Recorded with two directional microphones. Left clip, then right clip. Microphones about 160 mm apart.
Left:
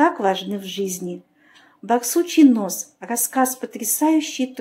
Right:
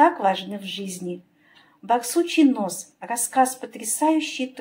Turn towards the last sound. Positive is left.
turn(degrees=30)  # may be behind; listen again after turning